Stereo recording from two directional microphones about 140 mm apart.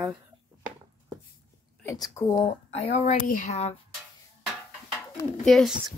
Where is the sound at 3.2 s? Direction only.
80° left.